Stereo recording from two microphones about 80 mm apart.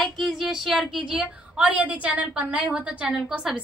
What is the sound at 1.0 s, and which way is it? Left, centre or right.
A woman's voice, centre.